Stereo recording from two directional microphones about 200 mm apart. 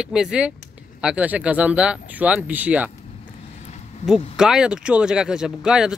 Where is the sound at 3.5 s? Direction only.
35° left (ahead or behind).